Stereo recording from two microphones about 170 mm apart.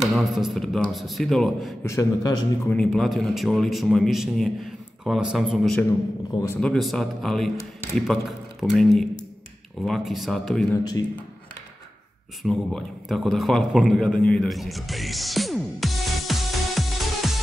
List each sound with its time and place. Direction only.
0.0 s a man's voice: centre (ahead or behind)
1.9 s a man's voice: 20° left (ahead or behind)
2.7 s a man's voice: centre (ahead or behind)
10.8 s a man's voice: 25° left (ahead or behind)
12.4 s a man's voice: centre (ahead or behind)